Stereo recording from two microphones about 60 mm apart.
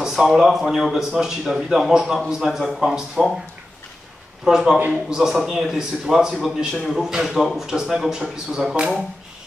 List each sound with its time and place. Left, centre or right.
0.0 s a man's voice: centre
4.5 s a man's voice: centre